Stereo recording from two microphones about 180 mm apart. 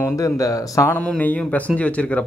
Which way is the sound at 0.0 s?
20° left (ahead or behind).